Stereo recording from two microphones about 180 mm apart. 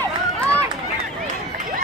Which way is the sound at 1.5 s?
50° right (ahead or behind).